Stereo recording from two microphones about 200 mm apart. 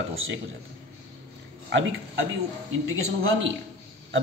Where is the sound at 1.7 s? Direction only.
65° right (ahead or behind).